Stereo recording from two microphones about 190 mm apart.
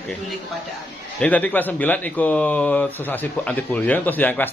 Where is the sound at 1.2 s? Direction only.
10° left (ahead or behind).